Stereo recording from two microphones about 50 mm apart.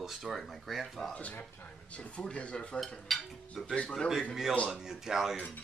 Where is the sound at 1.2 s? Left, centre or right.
Left.